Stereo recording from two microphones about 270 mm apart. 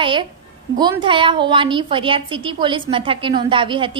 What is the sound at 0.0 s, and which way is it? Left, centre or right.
A woman's voice, centre.